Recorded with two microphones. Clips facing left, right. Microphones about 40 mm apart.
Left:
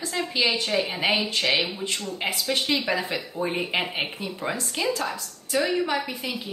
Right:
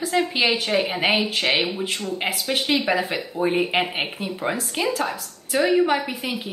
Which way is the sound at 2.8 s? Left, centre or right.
Centre.